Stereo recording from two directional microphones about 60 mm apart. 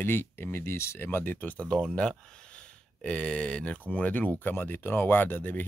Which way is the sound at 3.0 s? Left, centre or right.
Centre.